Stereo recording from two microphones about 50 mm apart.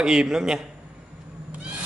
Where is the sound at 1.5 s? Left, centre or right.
Right.